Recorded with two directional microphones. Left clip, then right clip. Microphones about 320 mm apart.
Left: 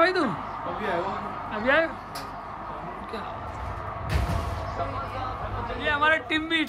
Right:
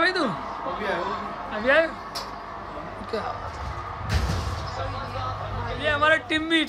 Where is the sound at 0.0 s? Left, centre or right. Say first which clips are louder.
Left 1 dB; centre.